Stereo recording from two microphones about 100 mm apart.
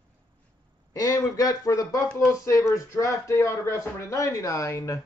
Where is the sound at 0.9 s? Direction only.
35° left (ahead or behind).